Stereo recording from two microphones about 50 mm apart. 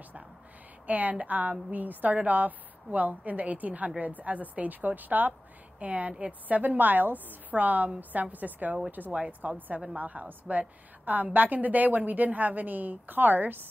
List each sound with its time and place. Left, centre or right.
0.8 s a woman's voice: right